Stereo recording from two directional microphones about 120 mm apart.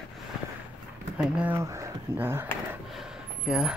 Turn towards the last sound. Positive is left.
turn(degrees=-5)  # may be behind; listen again after turning